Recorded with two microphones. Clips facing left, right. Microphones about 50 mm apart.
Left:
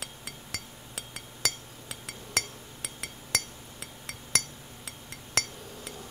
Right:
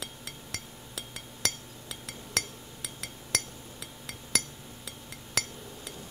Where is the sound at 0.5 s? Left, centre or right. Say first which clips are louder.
Even; left.